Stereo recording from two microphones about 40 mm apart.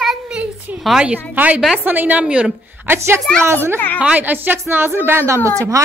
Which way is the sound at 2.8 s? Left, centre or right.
Right.